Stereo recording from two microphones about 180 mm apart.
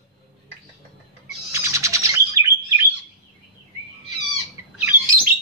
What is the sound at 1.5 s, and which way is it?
Bird, 15° right (ahead or behind).